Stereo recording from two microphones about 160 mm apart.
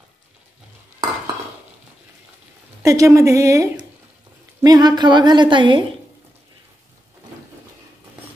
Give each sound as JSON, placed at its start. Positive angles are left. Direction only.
{"t": 2.8, "sound": "a woman's voice", "side_deg": -20}